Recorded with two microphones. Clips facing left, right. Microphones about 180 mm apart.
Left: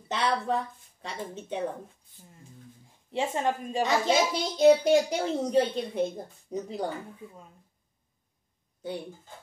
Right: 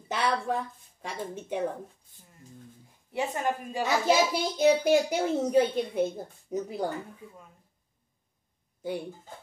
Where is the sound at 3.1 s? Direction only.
25° left (ahead or behind).